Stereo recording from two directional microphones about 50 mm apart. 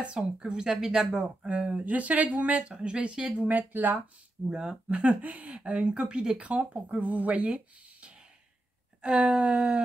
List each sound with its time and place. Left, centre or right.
0.2 s speech: centre
3.4 s speech: right
4.5 s speech: centre
4.8 s speech: right